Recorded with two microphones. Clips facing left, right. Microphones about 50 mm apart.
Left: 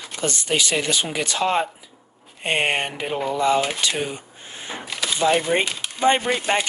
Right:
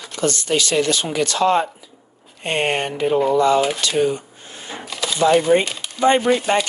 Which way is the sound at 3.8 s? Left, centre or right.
Centre.